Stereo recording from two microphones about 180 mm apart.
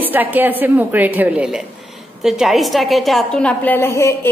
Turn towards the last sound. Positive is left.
turn(degrees=15)  # may be behind; listen again after turning